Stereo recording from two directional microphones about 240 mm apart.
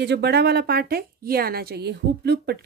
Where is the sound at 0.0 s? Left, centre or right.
Right.